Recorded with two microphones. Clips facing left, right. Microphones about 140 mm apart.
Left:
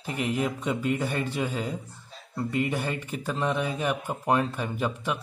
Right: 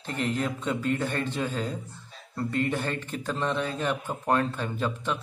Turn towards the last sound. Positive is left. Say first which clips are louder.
# left 1 dB
turn(degrees=10)  # may be behind; listen again after turning